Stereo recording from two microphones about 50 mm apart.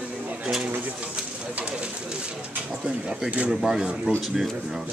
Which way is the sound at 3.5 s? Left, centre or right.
Centre.